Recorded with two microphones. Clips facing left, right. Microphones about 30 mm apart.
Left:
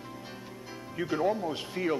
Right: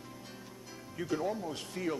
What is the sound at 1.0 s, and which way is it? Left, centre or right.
Speech, left.